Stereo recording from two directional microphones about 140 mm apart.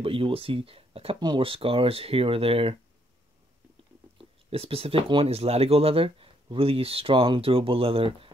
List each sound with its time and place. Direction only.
0.0 s speech: 40° right (ahead or behind)
4.2 s speech: 45° right (ahead or behind)